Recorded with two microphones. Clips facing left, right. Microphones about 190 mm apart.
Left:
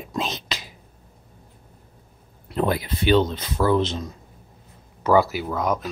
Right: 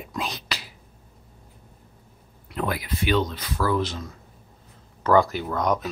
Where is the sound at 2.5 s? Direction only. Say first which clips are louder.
Left 5 dB; 30° left (ahead or behind).